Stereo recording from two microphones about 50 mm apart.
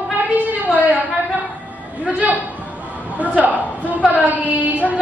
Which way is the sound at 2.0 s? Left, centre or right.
Right.